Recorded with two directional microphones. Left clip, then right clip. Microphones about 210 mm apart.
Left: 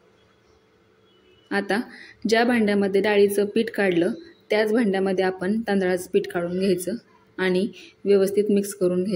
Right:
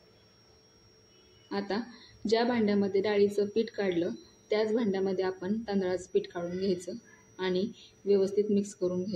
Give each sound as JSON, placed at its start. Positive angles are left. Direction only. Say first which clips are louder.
{"t": 1.5, "sound": "a woman's voice", "louder": "left 10 dB", "side_deg": 35}